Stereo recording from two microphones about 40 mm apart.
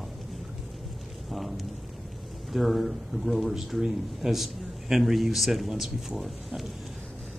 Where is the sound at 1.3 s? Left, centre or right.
Centre.